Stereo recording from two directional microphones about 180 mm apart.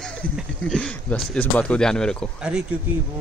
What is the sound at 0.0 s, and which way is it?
Speech, 5° left (ahead or behind).